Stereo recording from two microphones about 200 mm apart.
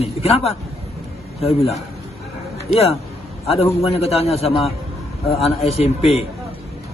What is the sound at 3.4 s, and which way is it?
A man's voice, 30° left (ahead or behind).